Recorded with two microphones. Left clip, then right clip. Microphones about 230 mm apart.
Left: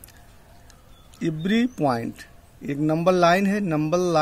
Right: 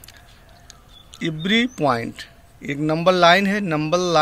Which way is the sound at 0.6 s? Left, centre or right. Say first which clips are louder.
Right 7 dB; centre.